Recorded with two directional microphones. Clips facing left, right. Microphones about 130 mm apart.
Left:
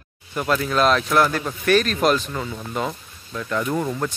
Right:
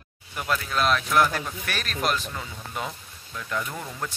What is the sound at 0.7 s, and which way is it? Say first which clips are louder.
Speech: left 4 dB; 5° right (ahead or behind).